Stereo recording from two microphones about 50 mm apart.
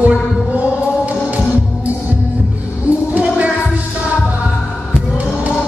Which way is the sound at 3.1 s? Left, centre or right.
Right.